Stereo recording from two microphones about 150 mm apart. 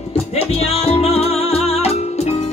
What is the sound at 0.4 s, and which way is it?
Music, 40° left (ahead or behind).